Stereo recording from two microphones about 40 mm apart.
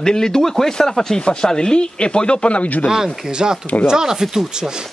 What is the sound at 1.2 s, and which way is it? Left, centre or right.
Speech, centre.